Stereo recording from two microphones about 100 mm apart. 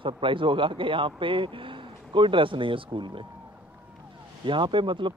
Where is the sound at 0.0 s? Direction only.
60° right (ahead or behind).